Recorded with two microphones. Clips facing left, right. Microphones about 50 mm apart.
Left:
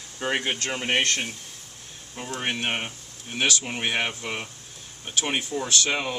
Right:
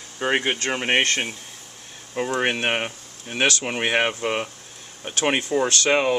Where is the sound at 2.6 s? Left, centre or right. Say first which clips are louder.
Right 5 dB; right.